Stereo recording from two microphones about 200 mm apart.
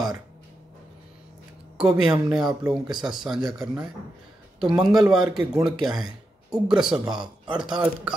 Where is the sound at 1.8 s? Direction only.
5° right (ahead or behind).